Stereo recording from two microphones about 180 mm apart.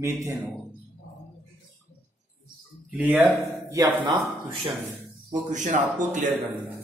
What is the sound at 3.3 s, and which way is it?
Speech, 20° right (ahead or behind).